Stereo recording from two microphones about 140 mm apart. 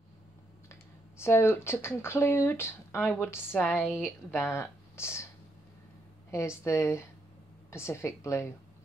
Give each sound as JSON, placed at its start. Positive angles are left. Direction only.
{"t": 1.2, "sound": "speech", "side_deg": 15}
{"t": 3.7, "sound": "a woman's voice", "side_deg": -5}
{"t": 4.3, "sound": "speech", "side_deg": 20}
{"t": 6.3, "sound": "a woman's voice", "side_deg": 20}